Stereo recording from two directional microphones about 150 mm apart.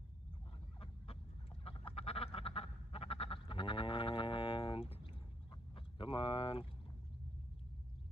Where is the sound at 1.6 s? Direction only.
40° left (ahead or behind).